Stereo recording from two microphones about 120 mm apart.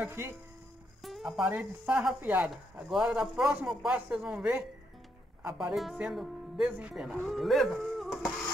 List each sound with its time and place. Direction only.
0.0 s speech: 20° right (ahead or behind)
1.0 s music: centre (ahead or behind)
1.5 s speech: 10° right (ahead or behind)